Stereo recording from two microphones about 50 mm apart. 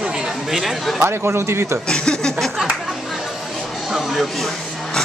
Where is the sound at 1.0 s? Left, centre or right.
Right.